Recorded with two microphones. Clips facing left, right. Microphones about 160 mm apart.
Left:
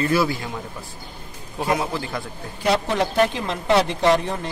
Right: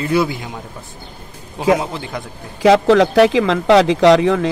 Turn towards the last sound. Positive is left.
turn(degrees=-90)